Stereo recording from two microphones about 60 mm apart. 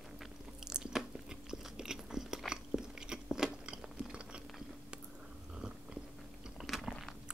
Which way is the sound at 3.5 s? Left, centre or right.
Centre.